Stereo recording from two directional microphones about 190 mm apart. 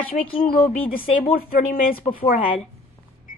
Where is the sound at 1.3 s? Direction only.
50° left (ahead or behind).